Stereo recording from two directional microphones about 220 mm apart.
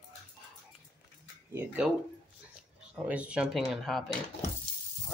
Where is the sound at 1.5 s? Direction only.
5° right (ahead or behind).